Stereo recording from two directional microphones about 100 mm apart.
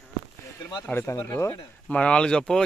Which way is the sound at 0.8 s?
25° left (ahead or behind).